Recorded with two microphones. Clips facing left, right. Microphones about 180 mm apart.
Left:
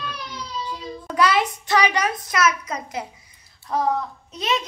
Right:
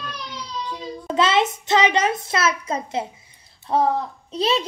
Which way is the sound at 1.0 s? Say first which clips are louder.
Right 1 dB; 25° right (ahead or behind).